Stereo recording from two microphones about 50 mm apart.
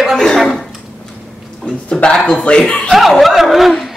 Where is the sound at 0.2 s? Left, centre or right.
Centre.